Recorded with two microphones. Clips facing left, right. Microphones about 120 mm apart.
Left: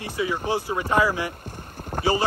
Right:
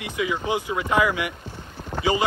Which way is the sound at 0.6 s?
35° left (ahead or behind).